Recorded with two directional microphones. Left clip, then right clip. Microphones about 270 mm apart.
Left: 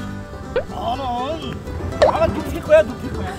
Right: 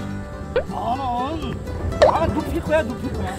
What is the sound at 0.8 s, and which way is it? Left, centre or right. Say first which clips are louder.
Speech: even; centre.